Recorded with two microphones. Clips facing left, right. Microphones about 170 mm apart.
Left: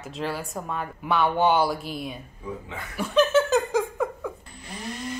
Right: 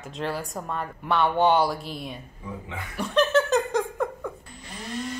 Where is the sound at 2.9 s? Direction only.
Centre (ahead or behind).